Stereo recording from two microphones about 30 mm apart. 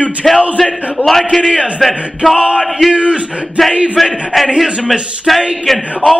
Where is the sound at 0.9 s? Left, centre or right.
Centre.